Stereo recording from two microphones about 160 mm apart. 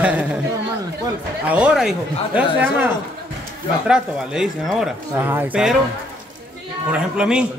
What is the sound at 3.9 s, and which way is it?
Speech, 5° right (ahead or behind).